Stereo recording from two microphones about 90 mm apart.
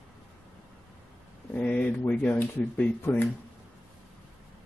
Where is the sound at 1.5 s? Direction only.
15° left (ahead or behind).